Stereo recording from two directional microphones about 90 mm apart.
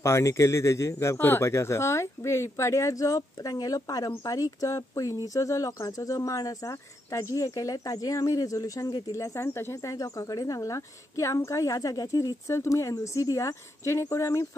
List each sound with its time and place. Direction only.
0.0 s speech: 30° left (ahead or behind)
9.9 s speech: 40° left (ahead or behind)